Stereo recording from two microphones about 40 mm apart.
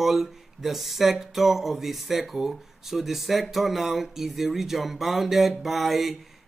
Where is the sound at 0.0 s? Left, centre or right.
Centre.